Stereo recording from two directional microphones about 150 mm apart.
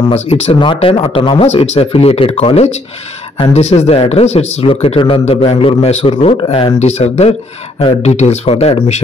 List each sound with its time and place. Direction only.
0.1 s speech: 45° left (ahead or behind)